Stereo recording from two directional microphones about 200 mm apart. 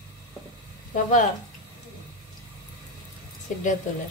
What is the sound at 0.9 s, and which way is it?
Speech, 40° left (ahead or behind).